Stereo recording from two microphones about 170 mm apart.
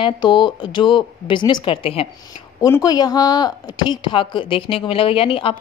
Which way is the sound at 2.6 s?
20° left (ahead or behind).